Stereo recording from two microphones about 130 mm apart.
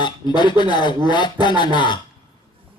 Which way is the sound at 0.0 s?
35° left (ahead or behind).